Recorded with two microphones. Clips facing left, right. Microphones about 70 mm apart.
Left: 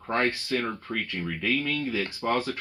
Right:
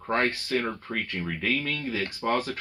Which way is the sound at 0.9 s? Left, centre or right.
Right.